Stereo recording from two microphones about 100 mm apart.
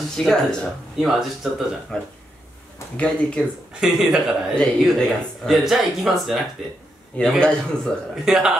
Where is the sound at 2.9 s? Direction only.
10° left (ahead or behind).